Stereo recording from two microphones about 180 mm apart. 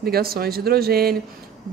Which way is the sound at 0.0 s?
60° right (ahead or behind).